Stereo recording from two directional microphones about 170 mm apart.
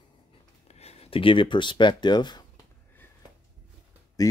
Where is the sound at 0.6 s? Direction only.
40° left (ahead or behind).